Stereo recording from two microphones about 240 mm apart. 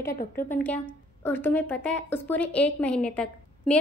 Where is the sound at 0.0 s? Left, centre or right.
Left.